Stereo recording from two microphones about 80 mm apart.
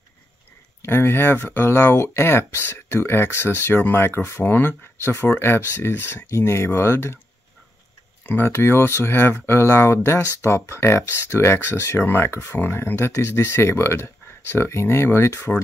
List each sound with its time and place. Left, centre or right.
0.8 s speech: left
8.5 s speech: left